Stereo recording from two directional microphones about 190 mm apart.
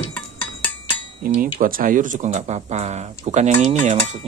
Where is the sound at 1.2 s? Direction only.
45° right (ahead or behind).